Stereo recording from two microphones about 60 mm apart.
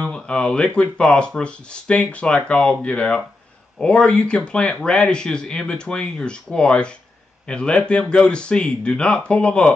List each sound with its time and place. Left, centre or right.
0.0 s speech: centre